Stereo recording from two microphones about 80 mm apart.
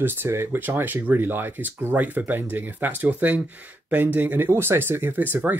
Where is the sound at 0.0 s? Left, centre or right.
Right.